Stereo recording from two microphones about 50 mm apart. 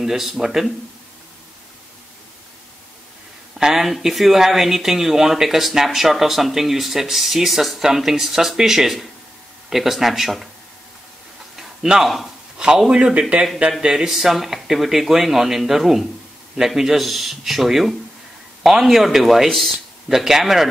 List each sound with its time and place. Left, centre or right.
0.0 s speech: centre
3.5 s speech: centre
11.5 s a sound: centre
12.5 s speech: centre
13.7 s speech: centre